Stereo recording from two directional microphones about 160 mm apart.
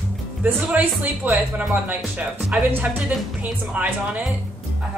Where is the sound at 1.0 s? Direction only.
10° right (ahead or behind).